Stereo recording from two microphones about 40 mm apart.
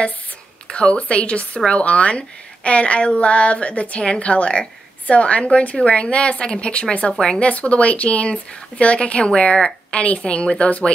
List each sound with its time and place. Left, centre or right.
0.7 s a woman's voice: left